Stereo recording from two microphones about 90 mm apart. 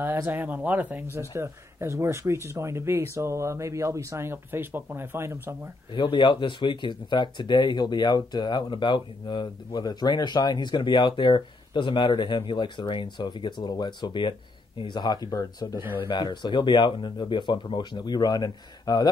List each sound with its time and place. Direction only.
0.0 s speech: 20° right (ahead or behind)
1.3 s speech: 30° right (ahead or behind)
5.9 s speech: 65° left (ahead or behind)
15.3 s speech: 40° left (ahead or behind)
16.0 s speech: 60° left (ahead or behind)